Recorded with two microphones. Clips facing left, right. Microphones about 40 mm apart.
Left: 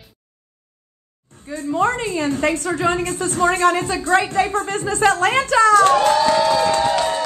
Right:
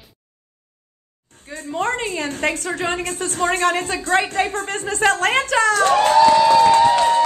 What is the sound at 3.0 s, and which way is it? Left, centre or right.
A woman's voice, right.